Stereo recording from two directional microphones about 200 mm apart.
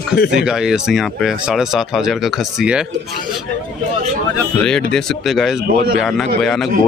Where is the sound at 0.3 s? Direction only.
5° right (ahead or behind).